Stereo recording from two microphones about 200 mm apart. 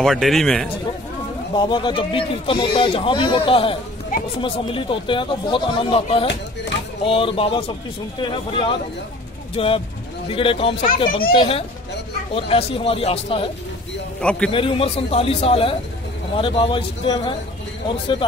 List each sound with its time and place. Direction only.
0.0 s a man's voice: centre (ahead or behind)
1.5 s speech: 25° left (ahead or behind)
14.5 s speech: 25° left (ahead or behind)